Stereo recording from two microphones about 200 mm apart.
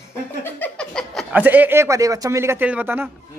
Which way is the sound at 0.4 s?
5° left (ahead or behind).